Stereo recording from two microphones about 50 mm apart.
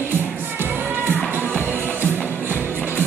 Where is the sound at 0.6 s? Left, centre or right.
Right.